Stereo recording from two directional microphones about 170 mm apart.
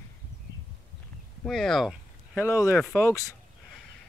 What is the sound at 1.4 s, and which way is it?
Speech, centre (ahead or behind).